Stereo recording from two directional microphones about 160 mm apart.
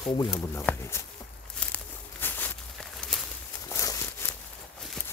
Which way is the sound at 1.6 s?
10° left (ahead or behind).